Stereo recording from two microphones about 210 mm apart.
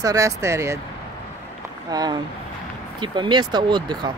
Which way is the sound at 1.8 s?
20° right (ahead or behind).